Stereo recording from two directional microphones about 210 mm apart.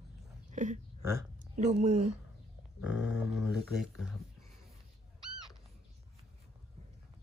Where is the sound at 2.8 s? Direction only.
5° right (ahead or behind).